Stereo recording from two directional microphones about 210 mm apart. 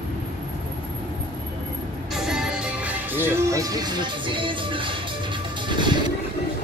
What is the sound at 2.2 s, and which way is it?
Music, 5° right (ahead or behind).